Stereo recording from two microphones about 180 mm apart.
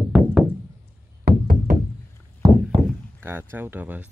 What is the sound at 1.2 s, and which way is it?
Music, 50° right (ahead or behind).